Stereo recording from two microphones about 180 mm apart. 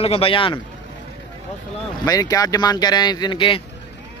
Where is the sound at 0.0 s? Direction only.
35° left (ahead or behind).